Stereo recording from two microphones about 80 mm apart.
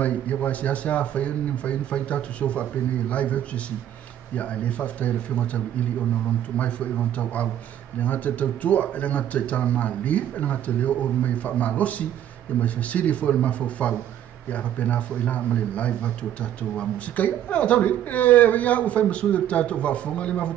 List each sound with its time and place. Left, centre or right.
0.0 s a man's voice: centre
4.4 s a man's voice: centre